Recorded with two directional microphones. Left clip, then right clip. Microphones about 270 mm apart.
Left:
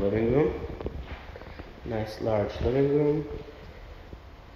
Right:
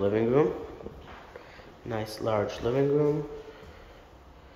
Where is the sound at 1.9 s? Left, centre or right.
Centre.